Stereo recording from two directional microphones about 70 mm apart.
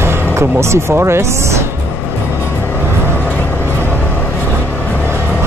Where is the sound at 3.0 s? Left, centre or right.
Left.